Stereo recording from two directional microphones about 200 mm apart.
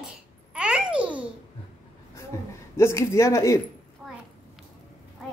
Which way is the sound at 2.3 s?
15° left (ahead or behind).